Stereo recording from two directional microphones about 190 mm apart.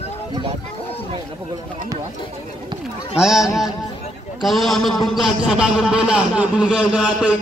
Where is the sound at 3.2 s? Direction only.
5° right (ahead or behind).